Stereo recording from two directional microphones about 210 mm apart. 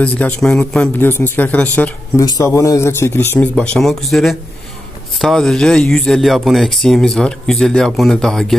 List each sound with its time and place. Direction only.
0.0 s a man's voice: 5° left (ahead or behind)